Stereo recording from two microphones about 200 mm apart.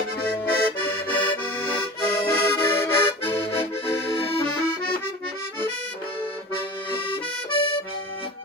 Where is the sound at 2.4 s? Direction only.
10° left (ahead or behind).